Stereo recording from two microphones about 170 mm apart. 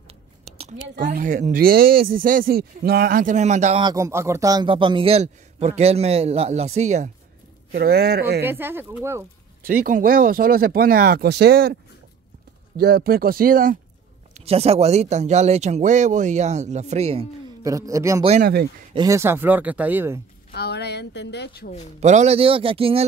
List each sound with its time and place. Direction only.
0.9 s speech: 50° right (ahead or behind)
3.8 s a man's voice: 20° right (ahead or behind); by 7.1 s 40° right (ahead or behind)
7.7 s a man's voice: 65° right (ahead or behind)
8.5 s speech: 10° right (ahead or behind)
9.0 s a sound: 15° right (ahead or behind)
9.7 s speech: 55° right (ahead or behind)
14.3 s a man's voice: 35° right (ahead or behind)
17.6 s a man's voice: 20° right (ahead or behind)
18.4 s a man's voice: 70° right (ahead or behind)
18.9 s speech: 15° right (ahead or behind)
20.5 s speech: 70° left (ahead or behind)
22.0 s a man's voice: 40° right (ahead or behind)